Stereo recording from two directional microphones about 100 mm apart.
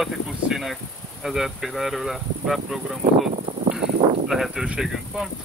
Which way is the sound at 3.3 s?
90° right.